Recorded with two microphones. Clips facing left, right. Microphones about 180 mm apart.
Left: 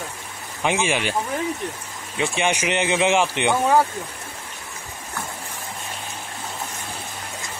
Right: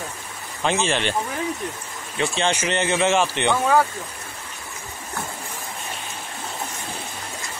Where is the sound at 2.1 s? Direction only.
10° left (ahead or behind).